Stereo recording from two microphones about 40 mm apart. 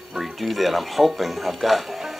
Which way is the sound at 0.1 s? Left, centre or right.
Centre.